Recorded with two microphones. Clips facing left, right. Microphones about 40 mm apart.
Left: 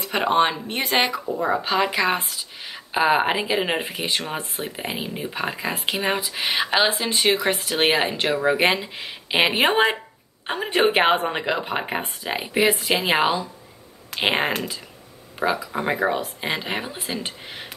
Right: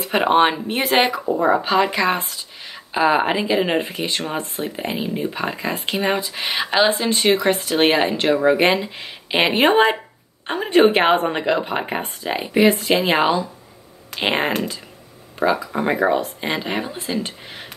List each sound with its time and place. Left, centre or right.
0.0 s speech: centre
1.2 s speech: right
1.5 s speech: centre